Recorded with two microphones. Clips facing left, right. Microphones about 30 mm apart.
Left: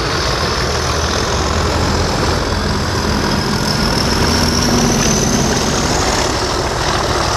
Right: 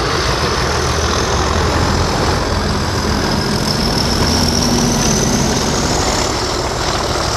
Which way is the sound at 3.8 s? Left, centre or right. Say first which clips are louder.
Left 1 dB; left.